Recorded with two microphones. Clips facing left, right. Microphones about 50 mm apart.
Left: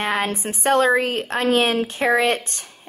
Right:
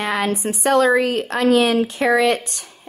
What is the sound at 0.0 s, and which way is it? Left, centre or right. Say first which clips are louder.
A woman's voice: right 2 dB; left.